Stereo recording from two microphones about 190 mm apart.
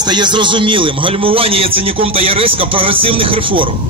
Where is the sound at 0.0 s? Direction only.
25° right (ahead or behind).